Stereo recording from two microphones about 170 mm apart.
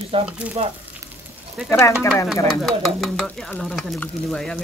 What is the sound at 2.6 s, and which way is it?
Speech, centre (ahead or behind).